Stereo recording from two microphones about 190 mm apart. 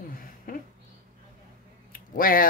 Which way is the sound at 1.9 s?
50° left (ahead or behind).